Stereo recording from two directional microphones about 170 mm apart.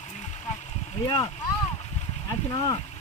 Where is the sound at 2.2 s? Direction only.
30° left (ahead or behind).